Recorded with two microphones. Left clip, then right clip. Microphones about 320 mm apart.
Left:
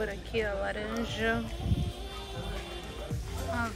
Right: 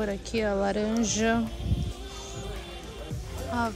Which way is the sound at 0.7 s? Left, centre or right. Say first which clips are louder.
Right 6 dB; centre.